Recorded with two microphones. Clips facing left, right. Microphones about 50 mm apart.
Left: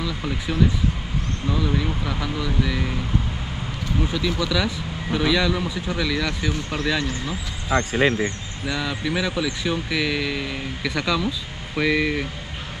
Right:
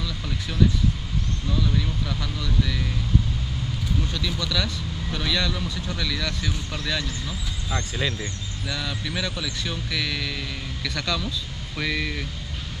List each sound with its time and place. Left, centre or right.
0.0 s speech: left
4.0 s speech: centre; by 8.3 s left
8.6 s speech: centre